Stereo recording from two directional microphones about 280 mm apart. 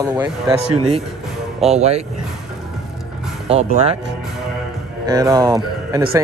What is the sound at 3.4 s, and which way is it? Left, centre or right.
Speech, right.